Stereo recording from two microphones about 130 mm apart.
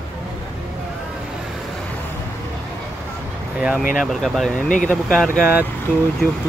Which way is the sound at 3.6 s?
10° right (ahead or behind).